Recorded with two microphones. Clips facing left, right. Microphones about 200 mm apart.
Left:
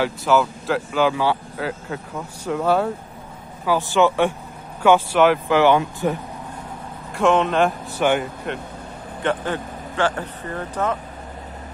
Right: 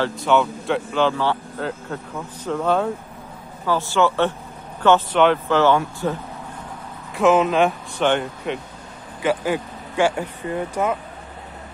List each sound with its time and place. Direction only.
0.0 s speech: 5° left (ahead or behind)
7.2 s speech: 5° right (ahead or behind)
9.2 s speech: 10° right (ahead or behind)